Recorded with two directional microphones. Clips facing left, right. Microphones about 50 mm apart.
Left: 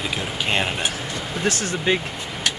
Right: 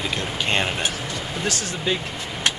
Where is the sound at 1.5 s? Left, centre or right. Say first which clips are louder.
Left 4 dB; left.